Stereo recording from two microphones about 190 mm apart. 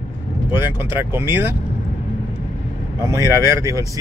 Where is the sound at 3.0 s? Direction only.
15° right (ahead or behind).